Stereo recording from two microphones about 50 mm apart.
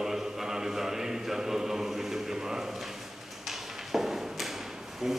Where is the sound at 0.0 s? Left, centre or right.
Centre.